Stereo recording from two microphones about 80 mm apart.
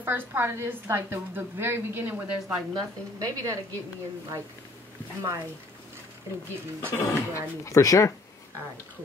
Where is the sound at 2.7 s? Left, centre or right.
Right.